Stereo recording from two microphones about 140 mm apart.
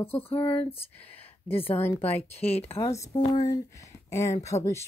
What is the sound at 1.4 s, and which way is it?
Speech, 15° left (ahead or behind).